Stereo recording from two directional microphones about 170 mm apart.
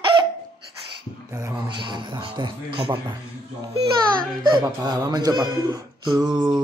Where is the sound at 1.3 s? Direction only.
15° right (ahead or behind).